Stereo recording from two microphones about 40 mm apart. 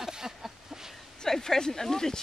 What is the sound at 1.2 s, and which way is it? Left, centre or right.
Speech, centre.